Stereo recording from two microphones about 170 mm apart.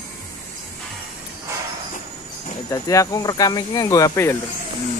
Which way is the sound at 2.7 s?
20° left (ahead or behind).